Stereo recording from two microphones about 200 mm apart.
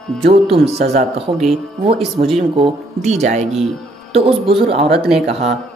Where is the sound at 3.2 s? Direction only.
35° right (ahead or behind).